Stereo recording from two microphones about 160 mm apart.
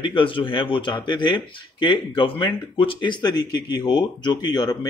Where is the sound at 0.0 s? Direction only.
30° left (ahead or behind).